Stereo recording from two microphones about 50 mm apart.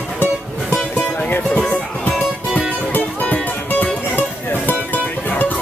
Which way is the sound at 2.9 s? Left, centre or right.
Left.